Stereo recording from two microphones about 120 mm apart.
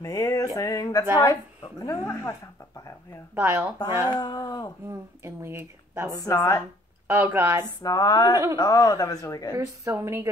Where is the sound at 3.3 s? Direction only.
15° right (ahead or behind).